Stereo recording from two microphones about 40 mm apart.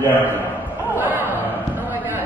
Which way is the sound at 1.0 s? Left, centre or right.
Right.